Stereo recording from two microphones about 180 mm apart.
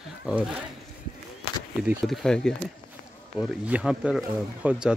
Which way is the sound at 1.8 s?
Centre (ahead or behind).